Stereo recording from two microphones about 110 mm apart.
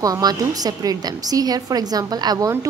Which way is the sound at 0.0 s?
35° right (ahead or behind).